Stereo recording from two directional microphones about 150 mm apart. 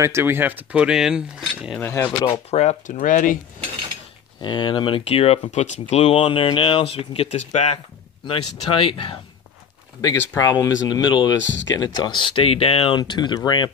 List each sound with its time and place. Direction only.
0.0 s speech: 15° right (ahead or behind)
1.8 s speech: 15° left (ahead or behind)
2.5 s speech: 45° left (ahead or behind); by 3.3 s 65° left (ahead or behind)
4.4 s speech: 30° left (ahead or behind)
10.0 s speech: 25° left (ahead or behind)